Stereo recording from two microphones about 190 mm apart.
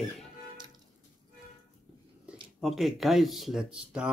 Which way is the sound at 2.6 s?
Centre (ahead or behind).